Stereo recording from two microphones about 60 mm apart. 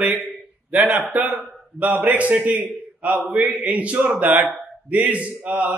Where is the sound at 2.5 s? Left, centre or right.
Right.